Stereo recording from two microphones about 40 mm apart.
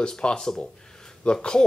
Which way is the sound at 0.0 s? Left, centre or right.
Left.